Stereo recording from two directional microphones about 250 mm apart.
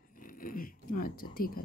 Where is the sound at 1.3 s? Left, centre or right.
Left.